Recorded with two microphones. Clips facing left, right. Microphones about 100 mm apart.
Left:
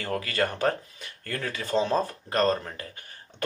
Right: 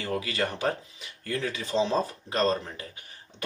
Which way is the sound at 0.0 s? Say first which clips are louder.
Left 2 dB; 50° left (ahead or behind).